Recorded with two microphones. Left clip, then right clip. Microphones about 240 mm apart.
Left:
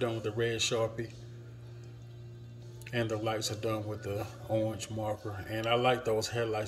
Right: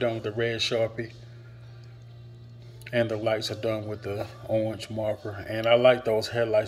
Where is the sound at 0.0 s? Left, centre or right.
Centre.